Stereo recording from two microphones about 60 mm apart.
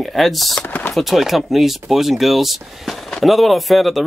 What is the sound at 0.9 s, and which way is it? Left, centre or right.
Speech, centre.